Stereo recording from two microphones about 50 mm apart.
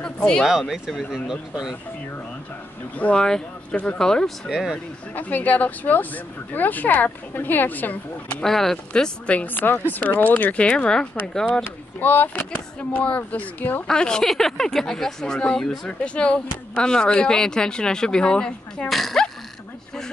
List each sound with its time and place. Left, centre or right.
0.0 s a sound: centre
0.5 s speech: centre
3.2 s speech: centre
4.5 s speech: centre
5.1 s speech: left
8.5 s speech: centre
9.5 s speech: left
10.3 s speech: left
12.0 s speech: left
13.8 s speech: centre
14.2 s speech: centre
18.9 s speech: centre